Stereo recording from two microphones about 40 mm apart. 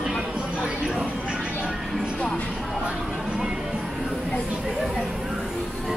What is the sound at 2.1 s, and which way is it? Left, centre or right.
Music, left.